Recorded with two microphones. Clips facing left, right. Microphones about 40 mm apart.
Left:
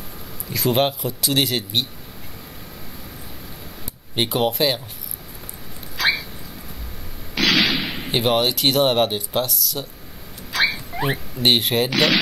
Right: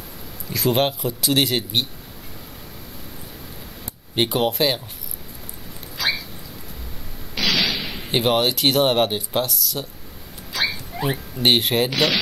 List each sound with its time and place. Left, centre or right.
0.5 s speech: centre
4.1 s speech: centre
5.9 s a sound: centre
7.4 s a sound: left
8.1 s speech: centre
10.5 s rodents: centre
11.3 s speech: centre